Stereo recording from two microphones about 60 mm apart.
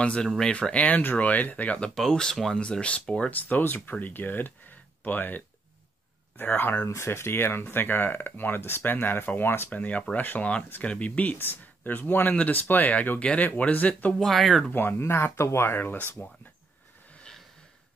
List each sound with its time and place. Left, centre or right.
0.0 s speech: centre
2.0 s speech: centre
3.3 s speech: left
9.7 s speech: left
13.2 s speech: centre
14.2 s speech: centre
14.7 s speech: left